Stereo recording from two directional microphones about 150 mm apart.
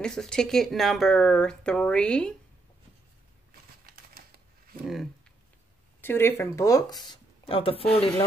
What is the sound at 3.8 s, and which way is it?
Typewriter, 75° right (ahead or behind).